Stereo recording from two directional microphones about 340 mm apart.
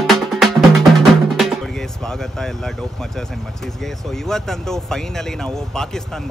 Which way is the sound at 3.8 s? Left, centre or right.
Centre.